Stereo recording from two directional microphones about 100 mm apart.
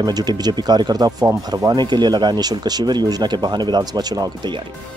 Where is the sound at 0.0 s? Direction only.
45° right (ahead or behind).